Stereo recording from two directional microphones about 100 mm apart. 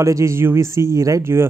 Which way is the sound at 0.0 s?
30° right (ahead or behind).